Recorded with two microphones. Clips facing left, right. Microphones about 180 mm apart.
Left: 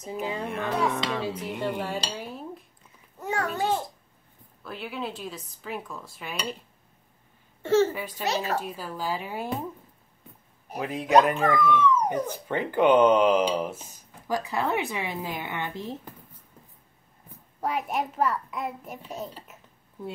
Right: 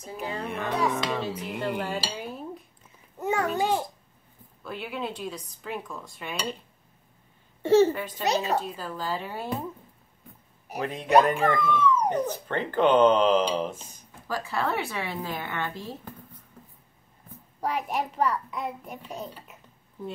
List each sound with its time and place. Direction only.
0.0 s a woman's voice: 20° left (ahead or behind)
0.4 s a child's voice: centre (ahead or behind)
2.1 s dishes: centre (ahead or behind)
3.2 s a sound: 20° right (ahead or behind)
3.5 s babbling: 15° right (ahead or behind)
4.6 s a child's voice: centre (ahead or behind)
7.6 s speech: 15° right (ahead or behind)
7.9 s a woman's voice: 10° left (ahead or behind)
8.2 s speech: 20° right (ahead or behind)
8.5 s a woman's voice: 10° left (ahead or behind)
10.7 s a child's voice: centre (ahead or behind); by 16.0 s 20° left (ahead or behind)
17.6 s a child's voice: centre (ahead or behind)